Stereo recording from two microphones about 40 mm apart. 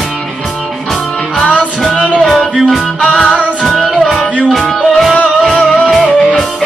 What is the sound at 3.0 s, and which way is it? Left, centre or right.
Music, centre.